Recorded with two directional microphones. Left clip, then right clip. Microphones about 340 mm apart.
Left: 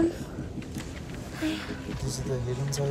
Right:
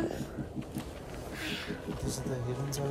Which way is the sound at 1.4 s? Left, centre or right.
Centre.